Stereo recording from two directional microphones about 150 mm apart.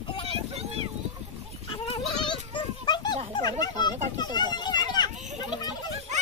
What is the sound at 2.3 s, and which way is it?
Children playing, 30° left (ahead or behind).